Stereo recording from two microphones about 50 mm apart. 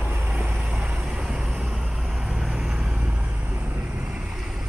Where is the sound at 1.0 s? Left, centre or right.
Centre; by 4.3 s right.